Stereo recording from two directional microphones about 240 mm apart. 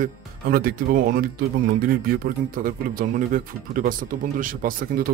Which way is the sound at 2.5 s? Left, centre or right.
Right.